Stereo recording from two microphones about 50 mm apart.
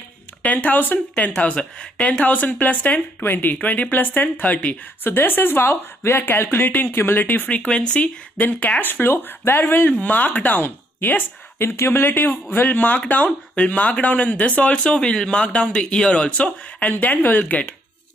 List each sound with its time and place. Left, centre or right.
0.4 s speech: left
1.4 s speech: left
7.7 s speech: left
8.5 s speech: left
9.0 s speech: left
9.8 s speech: left
11.5 s speech: left
17.0 s speech: left